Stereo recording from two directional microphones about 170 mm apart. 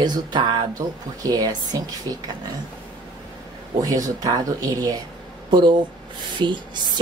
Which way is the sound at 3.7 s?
20° right (ahead or behind).